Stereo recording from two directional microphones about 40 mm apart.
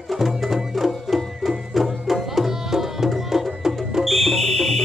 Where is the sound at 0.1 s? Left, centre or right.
Centre.